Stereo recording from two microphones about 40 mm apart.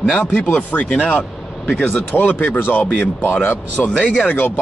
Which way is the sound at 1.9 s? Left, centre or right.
Left.